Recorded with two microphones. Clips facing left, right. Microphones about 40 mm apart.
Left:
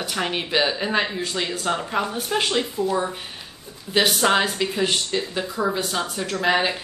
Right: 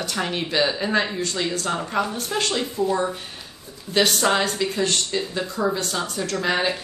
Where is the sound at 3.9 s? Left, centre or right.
Centre.